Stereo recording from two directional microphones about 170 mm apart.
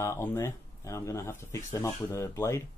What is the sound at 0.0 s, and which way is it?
Speech, 15° left (ahead or behind).